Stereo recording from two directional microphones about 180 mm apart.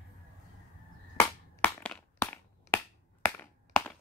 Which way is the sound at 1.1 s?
10° left (ahead or behind).